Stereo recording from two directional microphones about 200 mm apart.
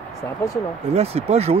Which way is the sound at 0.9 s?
30° right (ahead or behind).